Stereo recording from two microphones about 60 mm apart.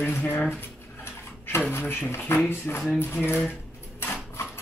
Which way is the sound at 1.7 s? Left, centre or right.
Left.